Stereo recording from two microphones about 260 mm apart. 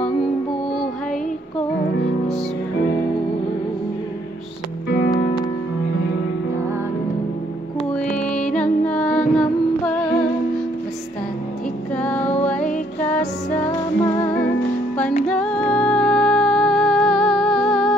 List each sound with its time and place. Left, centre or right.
4.8 s music: left
8.3 s music: centre
8.8 s a sound: centre
12.0 s music: centre